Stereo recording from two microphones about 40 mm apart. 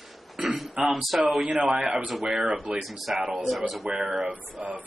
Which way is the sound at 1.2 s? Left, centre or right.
Right.